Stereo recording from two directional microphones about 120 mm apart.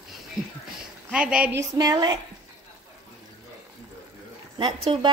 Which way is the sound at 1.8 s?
35° right (ahead or behind).